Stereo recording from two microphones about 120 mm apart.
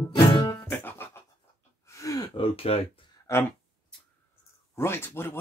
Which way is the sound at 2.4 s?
55° left (ahead or behind).